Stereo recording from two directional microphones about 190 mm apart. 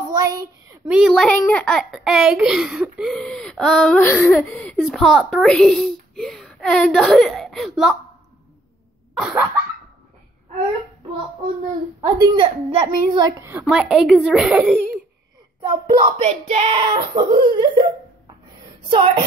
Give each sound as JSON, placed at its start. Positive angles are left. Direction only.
{"t": 0.1, "sound": "a sound", "side_deg": -20}
{"t": 0.8, "sound": "a child's voice", "side_deg": -5}
{"t": 9.1, "sound": "cough", "side_deg": -5}
{"t": 12.2, "sound": "a woman's voice", "side_deg": -25}
{"t": 13.4, "sound": "a woman's voice", "side_deg": -10}
{"t": 13.7, "sound": "a child's voice", "side_deg": 0}
{"t": 15.7, "sound": "speech", "side_deg": -35}
{"t": 16.9, "sound": "a woman's voice", "side_deg": -25}